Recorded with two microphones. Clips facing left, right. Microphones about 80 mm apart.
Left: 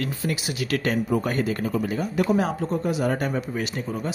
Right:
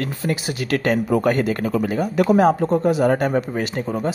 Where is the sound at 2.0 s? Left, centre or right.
Right.